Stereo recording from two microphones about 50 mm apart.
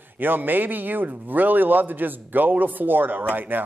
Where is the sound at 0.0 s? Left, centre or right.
Right.